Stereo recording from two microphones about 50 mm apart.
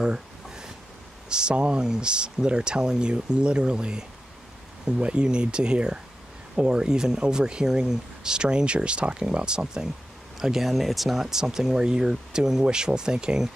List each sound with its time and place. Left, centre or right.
0.0 s a sound: centre
1.3 s speech: centre
10.4 s speech: centre